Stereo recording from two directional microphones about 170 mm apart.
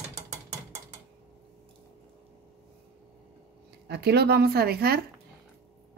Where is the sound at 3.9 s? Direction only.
75° right (ahead or behind).